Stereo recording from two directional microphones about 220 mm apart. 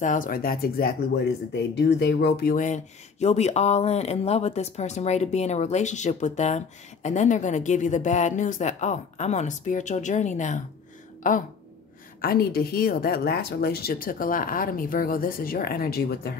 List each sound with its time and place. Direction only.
0.0 s a woman's voice: 35° left (ahead or behind)